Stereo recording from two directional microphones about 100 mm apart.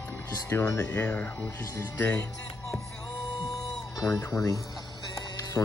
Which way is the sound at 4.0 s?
35° left (ahead or behind).